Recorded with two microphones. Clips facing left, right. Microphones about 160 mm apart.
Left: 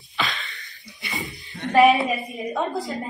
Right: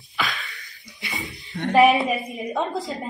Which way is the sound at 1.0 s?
Centre (ahead or behind).